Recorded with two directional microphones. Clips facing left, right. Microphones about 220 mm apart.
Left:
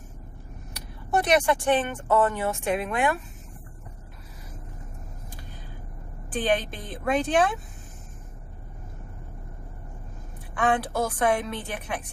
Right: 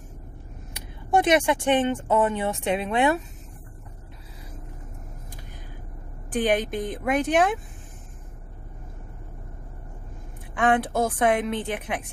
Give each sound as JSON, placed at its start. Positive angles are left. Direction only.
{"t": 1.2, "sound": "a woman's voice", "side_deg": -20}
{"t": 6.3, "sound": "speech", "side_deg": -15}
{"t": 10.6, "sound": "a woman's voice", "side_deg": -20}